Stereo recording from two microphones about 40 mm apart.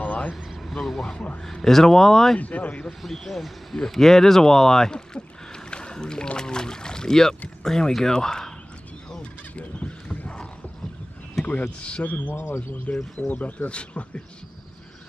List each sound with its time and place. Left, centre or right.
0.0 s vehicle: left
0.6 s vehicle: centre
1.4 s speech: centre
2.3 s speech: left
3.0 s speech: centre
5.7 s a sound: left
6.3 s speech: centre
9.6 s goose: left
10.0 s a sound: left
11.4 s speech: left
13.3 s speech: left
13.7 s speech: left